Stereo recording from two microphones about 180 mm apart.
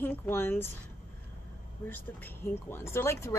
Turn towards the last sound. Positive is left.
turn(degrees=15)  # may be behind; listen again after turning